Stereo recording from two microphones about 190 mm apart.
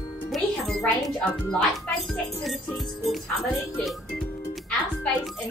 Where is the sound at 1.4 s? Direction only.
5° left (ahead or behind).